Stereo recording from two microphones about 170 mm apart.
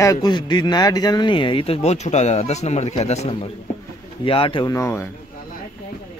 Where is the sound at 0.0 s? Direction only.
20° left (ahead or behind).